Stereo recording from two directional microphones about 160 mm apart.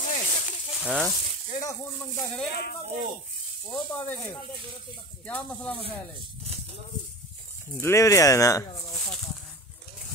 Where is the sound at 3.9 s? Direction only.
15° left (ahead or behind).